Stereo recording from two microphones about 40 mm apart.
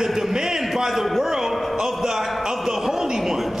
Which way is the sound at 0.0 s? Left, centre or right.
Centre.